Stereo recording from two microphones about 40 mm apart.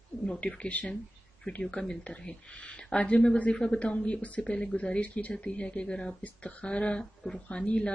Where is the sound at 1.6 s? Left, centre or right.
Centre.